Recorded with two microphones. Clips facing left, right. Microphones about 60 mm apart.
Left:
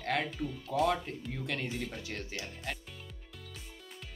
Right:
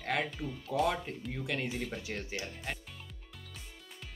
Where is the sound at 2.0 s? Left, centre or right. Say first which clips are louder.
Right 1 dB; centre.